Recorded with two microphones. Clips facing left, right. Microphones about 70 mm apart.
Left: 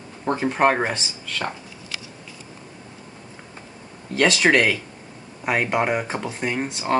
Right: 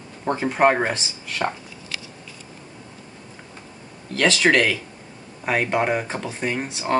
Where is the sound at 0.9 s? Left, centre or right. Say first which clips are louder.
Even; centre.